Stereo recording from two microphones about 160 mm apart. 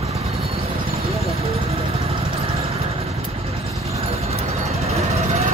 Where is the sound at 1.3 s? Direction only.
40° right (ahead or behind).